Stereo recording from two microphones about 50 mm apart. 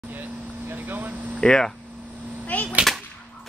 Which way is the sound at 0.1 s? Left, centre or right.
Right.